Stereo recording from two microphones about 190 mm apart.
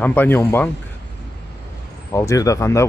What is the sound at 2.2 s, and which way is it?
Speech, 15° left (ahead or behind).